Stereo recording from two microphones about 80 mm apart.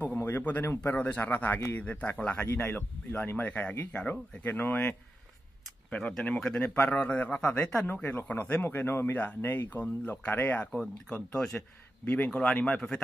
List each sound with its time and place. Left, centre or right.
0.0 s a sound: left
0.9 s speech: centre
5.9 s a man's voice: centre
7.8 s speech: left
8.6 s speech: left
10.7 s a man's voice: centre